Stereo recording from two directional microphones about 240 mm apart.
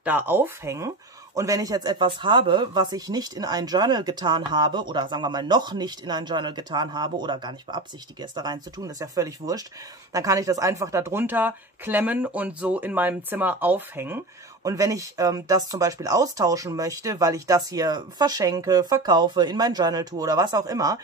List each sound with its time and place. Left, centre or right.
0.0 s speech: centre